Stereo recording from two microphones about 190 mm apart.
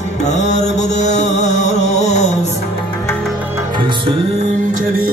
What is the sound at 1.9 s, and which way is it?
Music, 35° left (ahead or behind).